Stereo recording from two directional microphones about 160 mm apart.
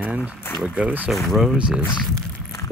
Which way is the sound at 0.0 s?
10° right (ahead or behind).